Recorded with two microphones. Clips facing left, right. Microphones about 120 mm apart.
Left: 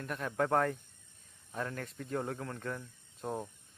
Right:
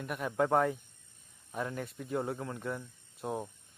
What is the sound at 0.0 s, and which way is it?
Speech, 10° right (ahead or behind).